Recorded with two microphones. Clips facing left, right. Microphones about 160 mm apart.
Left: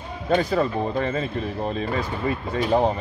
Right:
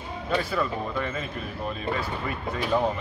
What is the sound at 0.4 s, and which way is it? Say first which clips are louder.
Speech: left 6 dB; 40° left (ahead or behind).